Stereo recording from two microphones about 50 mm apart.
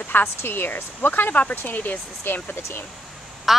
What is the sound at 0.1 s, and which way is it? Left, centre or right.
A woman's voice, left.